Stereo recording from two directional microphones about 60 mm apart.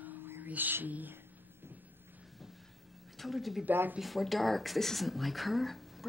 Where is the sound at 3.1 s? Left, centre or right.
Centre.